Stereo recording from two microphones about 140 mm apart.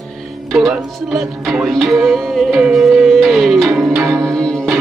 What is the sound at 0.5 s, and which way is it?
Music, centre (ahead or behind).